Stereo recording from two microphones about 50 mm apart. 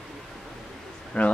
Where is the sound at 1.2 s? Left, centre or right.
Left.